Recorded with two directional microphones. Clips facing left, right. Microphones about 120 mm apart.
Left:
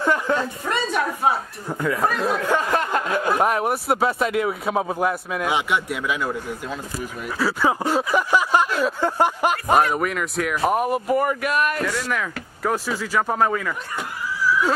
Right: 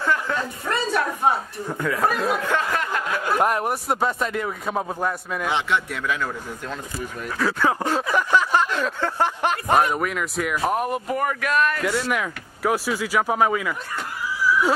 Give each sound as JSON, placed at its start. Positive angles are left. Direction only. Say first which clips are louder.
{"t": 0.0, "sound": "a woman's voice", "louder": "left 3 dB", "side_deg": 20}
{"t": 1.2, "sound": "speech", "louder": "even", "side_deg": 5}
{"t": 2.7, "sound": "a sound", "louder": "left 4 dB", "side_deg": 30}
{"t": 3.3, "sound": "speech", "louder": "left 1 dB", "side_deg": 0}
{"t": 11.8, "sound": "speech", "louder": "right 1 dB", "side_deg": -15}